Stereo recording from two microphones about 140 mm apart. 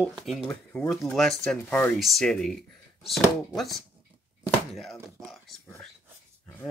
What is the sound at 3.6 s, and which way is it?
Speech, centre (ahead or behind).